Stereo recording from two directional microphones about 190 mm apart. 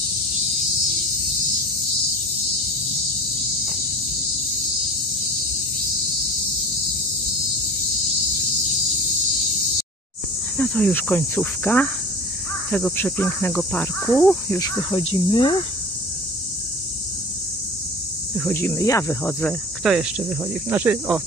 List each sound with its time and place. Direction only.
10.6 s cricket: 5° left (ahead or behind)
14.6 s speech: 25° left (ahead or behind)
18.5 s cricket: 10° left (ahead or behind)
19.8 s cricket: 5° right (ahead or behind)